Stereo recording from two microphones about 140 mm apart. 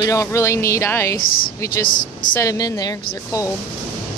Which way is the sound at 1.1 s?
90° left.